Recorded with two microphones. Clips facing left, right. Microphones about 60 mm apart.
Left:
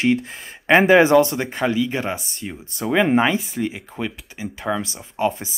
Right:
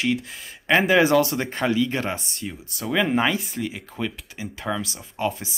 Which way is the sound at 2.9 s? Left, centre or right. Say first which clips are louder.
Left 4 dB; left.